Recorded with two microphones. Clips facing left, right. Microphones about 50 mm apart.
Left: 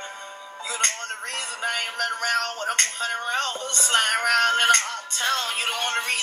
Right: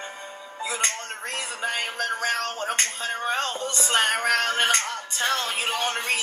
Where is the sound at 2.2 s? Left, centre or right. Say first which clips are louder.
Left 3 dB; left.